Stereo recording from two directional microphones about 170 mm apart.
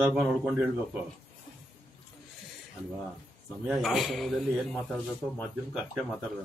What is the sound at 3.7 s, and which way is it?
Speech, centre (ahead or behind).